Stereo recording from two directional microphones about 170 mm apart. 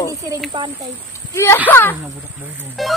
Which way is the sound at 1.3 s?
15° left (ahead or behind).